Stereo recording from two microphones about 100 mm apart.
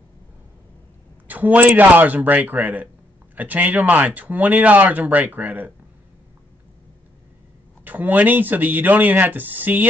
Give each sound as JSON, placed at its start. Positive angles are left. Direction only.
{"t": 1.2, "sound": "speech", "side_deg": -15}
{"t": 7.8, "sound": "speech", "side_deg": -15}